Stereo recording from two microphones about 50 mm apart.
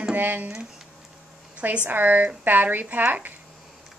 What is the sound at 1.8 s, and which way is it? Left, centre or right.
A woman's voice, right.